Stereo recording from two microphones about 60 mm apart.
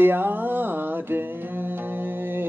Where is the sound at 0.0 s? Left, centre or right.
Right.